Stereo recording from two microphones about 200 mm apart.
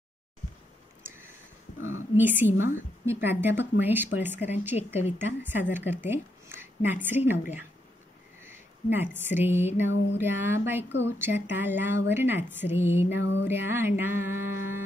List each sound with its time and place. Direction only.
1.8 s speech: 85° left
2.1 s a woman's voice: 10° right (ahead or behind)
13.2 s music: 65° left (ahead or behind)
13.5 s a woman's voice: 10° right (ahead or behind)